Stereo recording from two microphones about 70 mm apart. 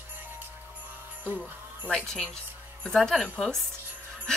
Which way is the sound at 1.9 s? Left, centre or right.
Centre.